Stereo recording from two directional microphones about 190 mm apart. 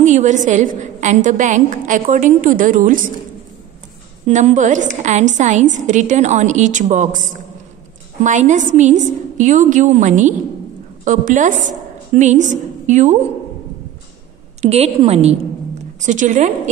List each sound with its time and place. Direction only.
0.0 s a woman's voice: 40° right (ahead or behind)
4.3 s a woman's voice: 40° right (ahead or behind)
8.2 s a woman's voice: 40° right (ahead or behind)
14.6 s a woman's voice: 35° right (ahead or behind)